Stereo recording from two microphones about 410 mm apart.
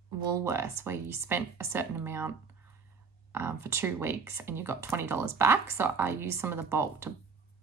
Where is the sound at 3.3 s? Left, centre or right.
Centre.